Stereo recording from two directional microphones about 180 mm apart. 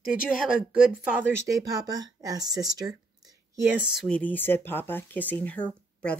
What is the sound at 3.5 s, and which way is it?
Speech, 10° right (ahead or behind).